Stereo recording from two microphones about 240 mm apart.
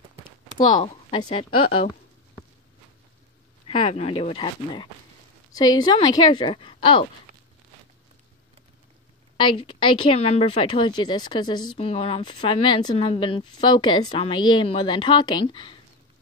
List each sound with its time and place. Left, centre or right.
0.7 s a woman's voice: left
3.6 s a woman's voice: left
9.4 s a woman's voice: left